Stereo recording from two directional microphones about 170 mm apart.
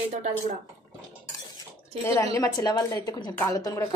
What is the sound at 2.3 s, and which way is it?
Speech, 20° left (ahead or behind).